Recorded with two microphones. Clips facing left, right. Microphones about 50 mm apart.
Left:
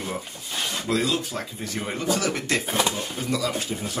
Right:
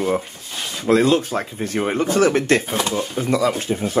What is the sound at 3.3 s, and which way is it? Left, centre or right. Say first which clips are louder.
Speech: right 7 dB; right.